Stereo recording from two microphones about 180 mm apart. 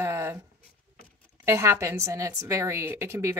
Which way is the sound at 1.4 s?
15° right (ahead or behind).